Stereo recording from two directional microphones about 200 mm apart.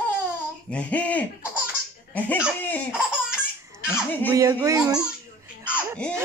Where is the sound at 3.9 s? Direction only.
10° left (ahead or behind).